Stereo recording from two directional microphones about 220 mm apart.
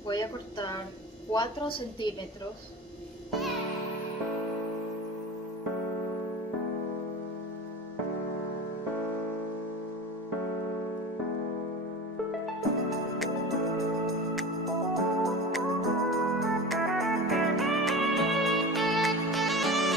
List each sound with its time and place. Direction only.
0.1 s a woman's voice: 20° left (ahead or behind)
13.2 s music: centre (ahead or behind)